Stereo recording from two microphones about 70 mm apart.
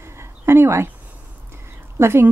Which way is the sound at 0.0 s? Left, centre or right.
Right.